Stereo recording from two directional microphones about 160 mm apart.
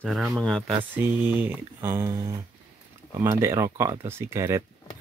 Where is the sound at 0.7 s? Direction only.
10° right (ahead or behind).